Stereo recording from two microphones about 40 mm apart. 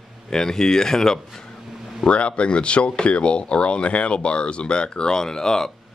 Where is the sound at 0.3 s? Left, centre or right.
Centre.